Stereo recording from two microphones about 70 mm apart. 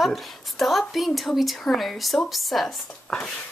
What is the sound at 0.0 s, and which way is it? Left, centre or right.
A woman's voice, centre.